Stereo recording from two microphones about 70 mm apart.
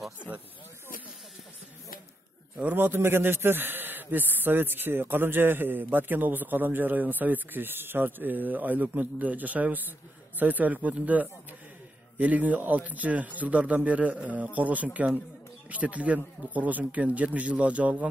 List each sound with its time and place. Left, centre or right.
2.6 s a man's voice: right